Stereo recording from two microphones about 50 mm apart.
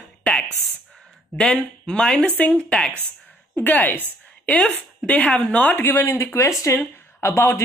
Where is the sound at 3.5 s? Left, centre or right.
Left.